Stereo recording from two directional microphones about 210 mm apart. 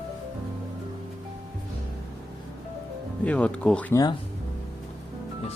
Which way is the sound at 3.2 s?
5° left (ahead or behind).